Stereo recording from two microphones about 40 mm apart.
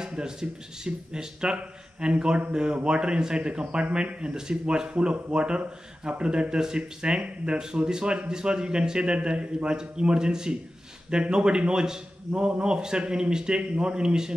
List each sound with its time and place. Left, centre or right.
0.0 s speech: centre